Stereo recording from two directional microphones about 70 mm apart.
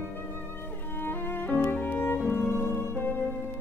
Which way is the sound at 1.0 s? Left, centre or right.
Left.